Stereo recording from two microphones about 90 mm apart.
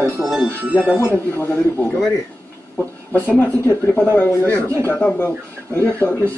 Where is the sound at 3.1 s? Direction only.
20° left (ahead or behind).